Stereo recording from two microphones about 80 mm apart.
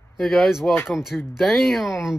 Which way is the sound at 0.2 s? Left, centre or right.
Centre.